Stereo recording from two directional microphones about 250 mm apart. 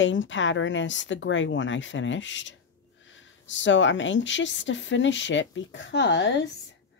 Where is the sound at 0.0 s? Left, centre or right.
Left.